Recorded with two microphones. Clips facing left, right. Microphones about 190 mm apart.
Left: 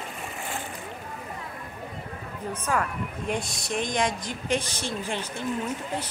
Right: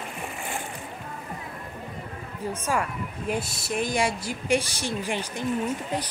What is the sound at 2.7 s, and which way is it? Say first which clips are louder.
Speech: left 1 dB; 5° right (ahead or behind).